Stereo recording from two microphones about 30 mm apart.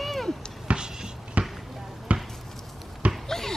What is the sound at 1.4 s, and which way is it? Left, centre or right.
Basketball bounce, right.